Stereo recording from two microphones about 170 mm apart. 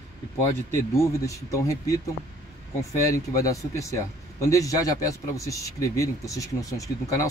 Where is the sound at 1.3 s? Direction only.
20° left (ahead or behind).